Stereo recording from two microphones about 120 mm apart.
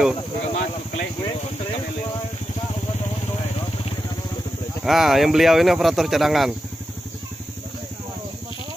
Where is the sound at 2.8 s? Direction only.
55° left (ahead or behind).